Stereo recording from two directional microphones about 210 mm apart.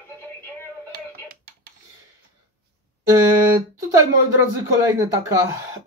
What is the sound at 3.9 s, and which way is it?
Speech, 15° right (ahead or behind).